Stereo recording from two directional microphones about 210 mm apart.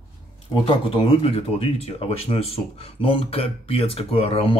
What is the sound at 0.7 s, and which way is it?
Speech, 25° left (ahead or behind).